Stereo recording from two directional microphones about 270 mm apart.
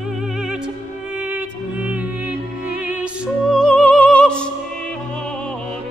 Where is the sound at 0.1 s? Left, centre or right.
Centre.